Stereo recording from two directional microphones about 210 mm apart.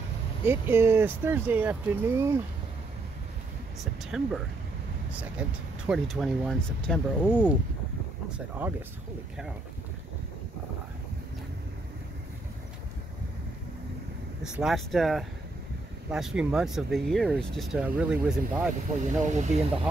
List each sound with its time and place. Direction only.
0.5 s speech: 10° right (ahead or behind)
3.8 s speech: centre (ahead or behind)
5.4 s speech: 5° right (ahead or behind)
8.3 s speech: 10° right (ahead or behind)
14.4 s speech: 5° right (ahead or behind)
19.0 s speech: 35° right (ahead or behind)